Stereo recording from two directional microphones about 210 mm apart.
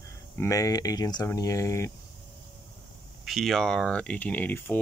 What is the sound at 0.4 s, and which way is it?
Speech, 15° left (ahead or behind).